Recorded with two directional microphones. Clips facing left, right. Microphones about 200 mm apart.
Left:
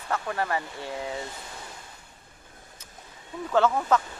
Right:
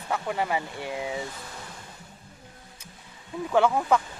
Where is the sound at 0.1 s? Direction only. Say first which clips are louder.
Right 1 dB; 15° right (ahead or behind).